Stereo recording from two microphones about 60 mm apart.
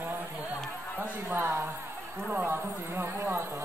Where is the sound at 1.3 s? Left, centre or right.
Right.